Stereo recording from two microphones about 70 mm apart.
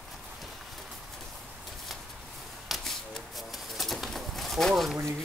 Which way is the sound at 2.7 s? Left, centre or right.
Centre.